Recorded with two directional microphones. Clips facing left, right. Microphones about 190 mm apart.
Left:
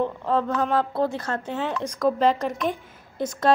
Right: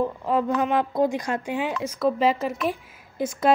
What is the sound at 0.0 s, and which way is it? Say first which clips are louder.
A woman's voice: even; 10° right (ahead or behind).